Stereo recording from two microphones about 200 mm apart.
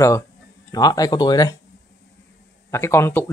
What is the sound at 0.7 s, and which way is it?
Speech, 20° left (ahead or behind).